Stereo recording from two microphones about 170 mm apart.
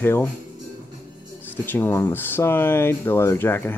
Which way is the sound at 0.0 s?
10° left (ahead or behind).